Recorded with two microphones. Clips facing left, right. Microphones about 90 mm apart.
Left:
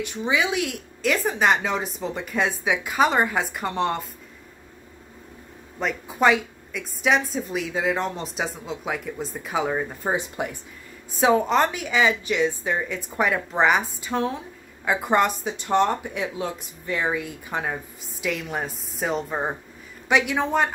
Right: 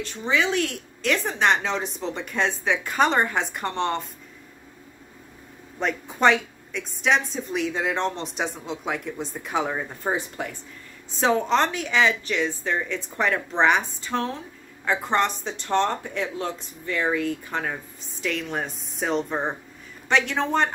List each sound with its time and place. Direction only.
0.0 s speech: 15° left (ahead or behind)
5.8 s a woman's voice: 5° left (ahead or behind)
11.1 s speech: 5° left (ahead or behind)